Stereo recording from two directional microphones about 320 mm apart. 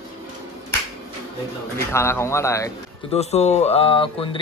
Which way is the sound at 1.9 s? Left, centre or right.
Centre.